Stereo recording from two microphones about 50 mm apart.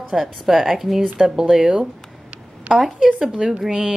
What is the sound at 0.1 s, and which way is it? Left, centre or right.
A woman's voice, centre.